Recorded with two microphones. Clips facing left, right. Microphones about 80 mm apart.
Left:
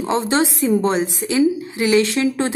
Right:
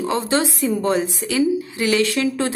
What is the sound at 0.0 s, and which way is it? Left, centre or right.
Speech, left.